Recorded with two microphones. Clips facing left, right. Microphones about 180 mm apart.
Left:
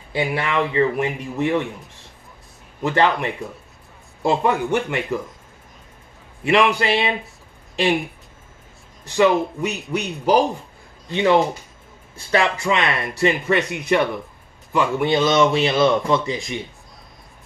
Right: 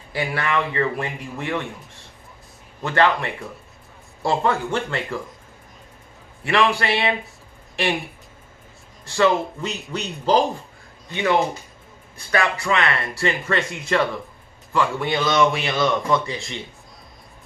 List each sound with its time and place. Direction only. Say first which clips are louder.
0.1 s a man's voice: left 2 dB; 20° left (ahead or behind)
2.8 s a man's voice: left 1 dB; 20° left (ahead or behind)
6.4 s a man's voice: left 3 dB; 20° left (ahead or behind)
9.0 s speech: left 2 dB; 15° left (ahead or behind)
11.1 s a man's voice: left 4 dB; 25° left (ahead or behind)